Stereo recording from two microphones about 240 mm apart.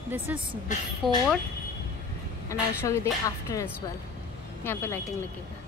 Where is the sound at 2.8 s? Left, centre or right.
Centre.